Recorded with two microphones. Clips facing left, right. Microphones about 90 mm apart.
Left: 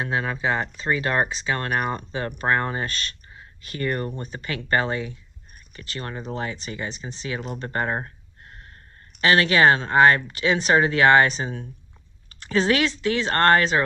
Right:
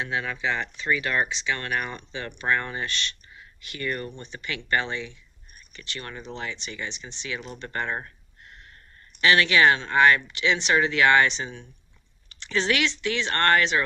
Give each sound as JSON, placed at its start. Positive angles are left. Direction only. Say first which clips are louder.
{"t": 0.0, "sound": "speech", "louder": "left 3 dB", "side_deg": 35}